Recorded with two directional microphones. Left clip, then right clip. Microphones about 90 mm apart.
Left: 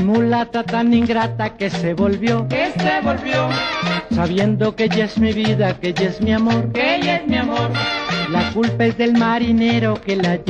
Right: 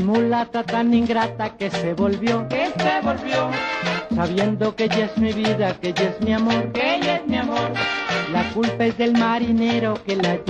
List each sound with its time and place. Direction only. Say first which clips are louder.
0.0 s music: left 2 dB; 20° left (ahead or behind)